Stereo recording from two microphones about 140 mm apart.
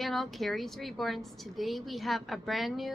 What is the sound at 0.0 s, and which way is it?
A woman's voice, centre (ahead or behind).